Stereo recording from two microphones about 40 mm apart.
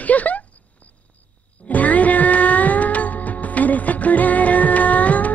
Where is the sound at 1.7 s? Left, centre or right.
Left.